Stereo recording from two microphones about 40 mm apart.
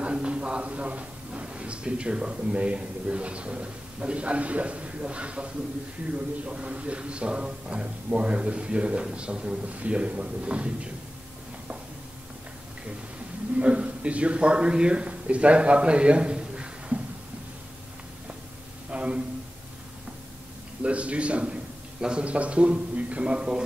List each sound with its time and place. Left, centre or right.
0.0 s a man's voice: right
13.6 s a man's voice: right
18.9 s a sound: right
20.8 s a man's voice: right